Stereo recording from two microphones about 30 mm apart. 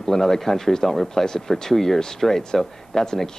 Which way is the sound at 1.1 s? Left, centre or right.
Centre.